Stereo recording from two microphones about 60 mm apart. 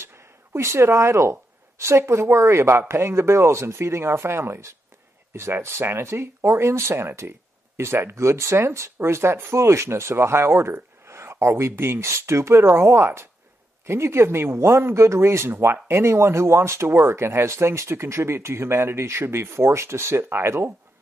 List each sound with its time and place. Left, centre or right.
0.0 s speech: right